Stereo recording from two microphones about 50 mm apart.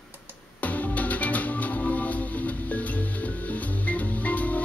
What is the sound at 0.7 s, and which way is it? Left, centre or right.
Music, left.